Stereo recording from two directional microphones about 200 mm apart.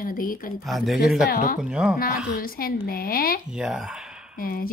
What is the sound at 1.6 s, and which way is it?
Speech, 5° right (ahead or behind).